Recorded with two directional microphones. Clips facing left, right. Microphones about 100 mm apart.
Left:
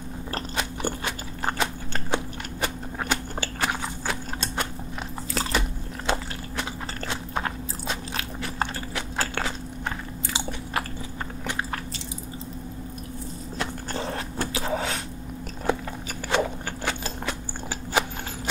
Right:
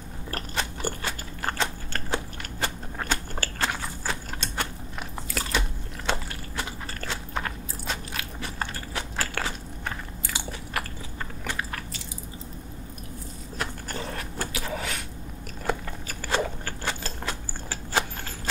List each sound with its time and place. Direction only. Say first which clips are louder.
0.3 s biting: left 1 dB; 20° left (ahead or behind)
5.4 s biting: left 4 dB; 25° left (ahead or behind)
7.0 s biting: left 2 dB; 25° left (ahead or behind)
13.6 s biting: left 2 dB; 25° left (ahead or behind)